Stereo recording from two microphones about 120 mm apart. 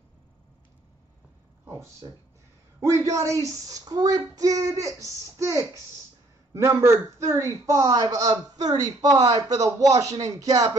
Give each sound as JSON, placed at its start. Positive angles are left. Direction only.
{"t": 2.8, "sound": "a man's voice", "side_deg": -25}